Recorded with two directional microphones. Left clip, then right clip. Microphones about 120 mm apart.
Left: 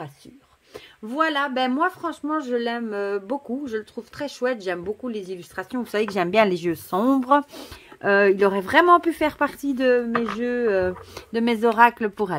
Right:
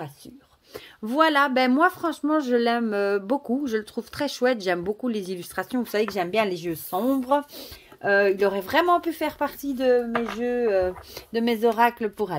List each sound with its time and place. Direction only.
1.0 s speech: 30° right (ahead or behind)
6.1 s speech: 50° left (ahead or behind)
8.0 s speech: 50° left (ahead or behind)
10.9 s speech: 30° left (ahead or behind)